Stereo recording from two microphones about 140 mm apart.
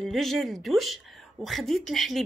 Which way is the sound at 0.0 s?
Centre (ahead or behind).